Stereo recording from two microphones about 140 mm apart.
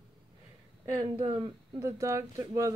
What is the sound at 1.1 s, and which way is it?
Speech, 35° right (ahead or behind).